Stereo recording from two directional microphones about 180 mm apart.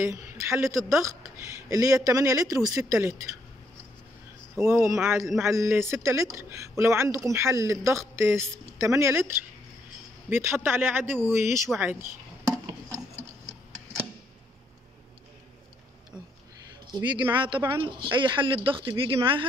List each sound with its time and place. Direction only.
0.0 s speech: 15° right (ahead or behind)
4.6 s speech: 15° right (ahead or behind)
11.7 s a sound: 10° right (ahead or behind)
16.9 s speech: 25° right (ahead or behind)